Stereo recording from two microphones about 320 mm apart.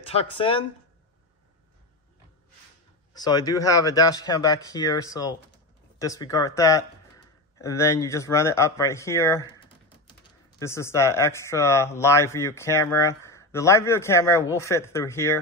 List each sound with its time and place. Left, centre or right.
0.1 s speech: centre
3.1 s speech: centre
10.6 s speech: centre